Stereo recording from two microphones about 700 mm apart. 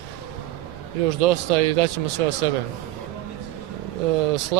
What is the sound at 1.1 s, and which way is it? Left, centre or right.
Speech, right.